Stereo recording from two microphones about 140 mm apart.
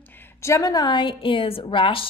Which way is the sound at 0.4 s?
20° left (ahead or behind).